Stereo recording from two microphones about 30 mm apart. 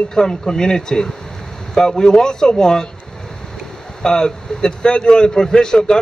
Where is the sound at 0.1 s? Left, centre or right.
Left.